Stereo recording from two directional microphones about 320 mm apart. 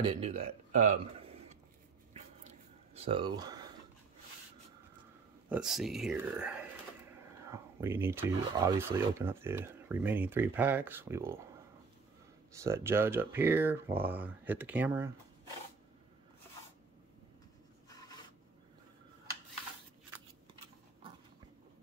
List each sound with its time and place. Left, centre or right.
0.0 s speech: centre
2.4 s a sound: centre
5.5 s speech: centre
12.5 s speech: centre
17.8 s writing: centre